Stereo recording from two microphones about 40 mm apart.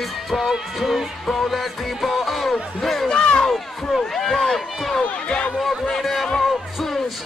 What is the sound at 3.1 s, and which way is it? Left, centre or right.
Crowd, left.